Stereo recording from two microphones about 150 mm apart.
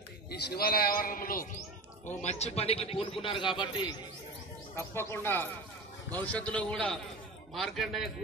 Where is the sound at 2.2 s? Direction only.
45° left (ahead or behind).